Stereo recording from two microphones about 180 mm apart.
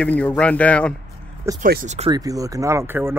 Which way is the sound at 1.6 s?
50° right (ahead or behind).